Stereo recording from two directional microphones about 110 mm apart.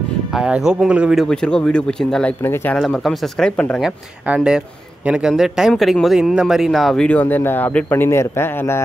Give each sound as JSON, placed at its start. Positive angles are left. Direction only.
{"t": 0.3, "sound": "speech", "side_deg": -5}
{"t": 1.2, "sound": "speech", "side_deg": 10}
{"t": 2.4, "sound": "a man's voice", "side_deg": 20}
{"t": 2.7, "sound": "a man's voice", "side_deg": 5}
{"t": 3.8, "sound": "a man's voice", "side_deg": -5}
{"t": 7.1, "sound": "a man's voice", "side_deg": 15}